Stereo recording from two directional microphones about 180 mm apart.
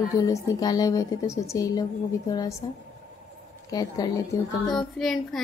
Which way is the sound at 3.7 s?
20° left (ahead or behind).